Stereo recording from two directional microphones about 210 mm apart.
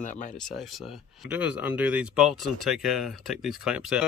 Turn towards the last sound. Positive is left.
turn(degrees=-5)  # may be behind; listen again after turning